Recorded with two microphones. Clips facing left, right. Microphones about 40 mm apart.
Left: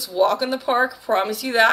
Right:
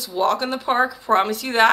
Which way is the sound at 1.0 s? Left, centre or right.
Right.